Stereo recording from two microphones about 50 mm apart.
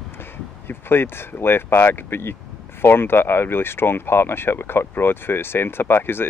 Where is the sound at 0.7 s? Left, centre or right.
Left.